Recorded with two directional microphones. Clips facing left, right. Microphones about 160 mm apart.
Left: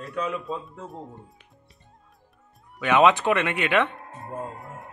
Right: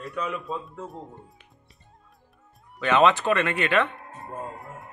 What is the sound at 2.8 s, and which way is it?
Speech, 15° left (ahead or behind).